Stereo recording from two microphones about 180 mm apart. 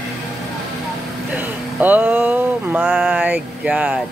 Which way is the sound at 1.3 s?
10° right (ahead or behind).